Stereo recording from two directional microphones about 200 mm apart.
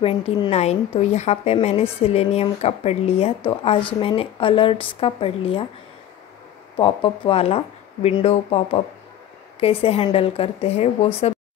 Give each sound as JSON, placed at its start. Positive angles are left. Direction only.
{"t": 0.0, "sound": "a woman's voice", "side_deg": 30}
{"t": 6.8, "sound": "speech", "side_deg": 25}